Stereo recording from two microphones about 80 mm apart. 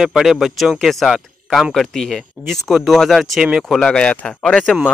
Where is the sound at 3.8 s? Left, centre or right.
Centre.